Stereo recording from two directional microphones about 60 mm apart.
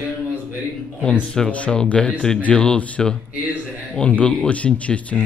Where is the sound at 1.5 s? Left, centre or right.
Centre.